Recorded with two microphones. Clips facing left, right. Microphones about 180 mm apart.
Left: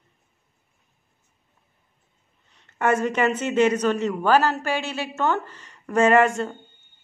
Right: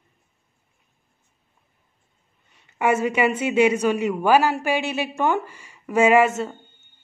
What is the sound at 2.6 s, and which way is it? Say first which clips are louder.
A woman's voice: right 1 dB; 10° right (ahead or behind).